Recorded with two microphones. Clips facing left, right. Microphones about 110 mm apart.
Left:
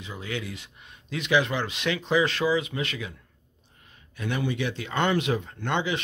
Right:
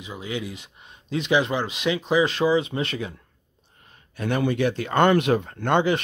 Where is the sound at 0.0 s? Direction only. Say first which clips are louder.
Right 3 dB; 15° right (ahead or behind); by 3.2 s 35° right (ahead or behind).